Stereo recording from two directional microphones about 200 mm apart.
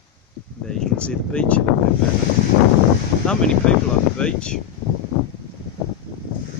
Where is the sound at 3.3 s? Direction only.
5° left (ahead or behind).